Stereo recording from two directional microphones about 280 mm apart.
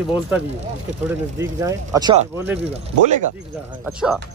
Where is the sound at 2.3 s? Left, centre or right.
Centre.